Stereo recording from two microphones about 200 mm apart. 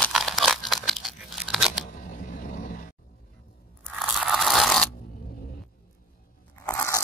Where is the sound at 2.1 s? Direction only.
40° left (ahead or behind).